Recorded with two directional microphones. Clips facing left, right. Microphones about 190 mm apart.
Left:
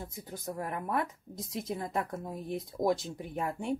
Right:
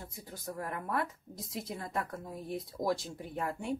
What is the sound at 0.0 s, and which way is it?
Speech, 20° left (ahead or behind).